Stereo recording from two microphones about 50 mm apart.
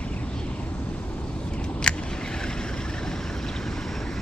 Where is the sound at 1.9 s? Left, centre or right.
Centre.